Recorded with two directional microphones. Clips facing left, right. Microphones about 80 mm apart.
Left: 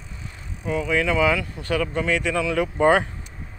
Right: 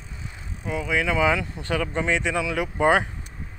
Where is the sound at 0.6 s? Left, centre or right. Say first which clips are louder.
Left 3 dB; centre.